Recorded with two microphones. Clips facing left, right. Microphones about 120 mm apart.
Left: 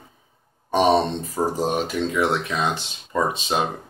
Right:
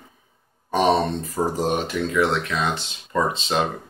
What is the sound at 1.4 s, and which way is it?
Speech, 20° left (ahead or behind).